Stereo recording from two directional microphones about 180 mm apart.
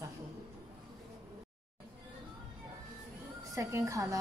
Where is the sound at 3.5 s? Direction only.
15° right (ahead or behind).